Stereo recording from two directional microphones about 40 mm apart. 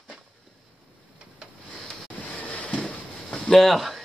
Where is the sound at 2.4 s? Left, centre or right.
Left.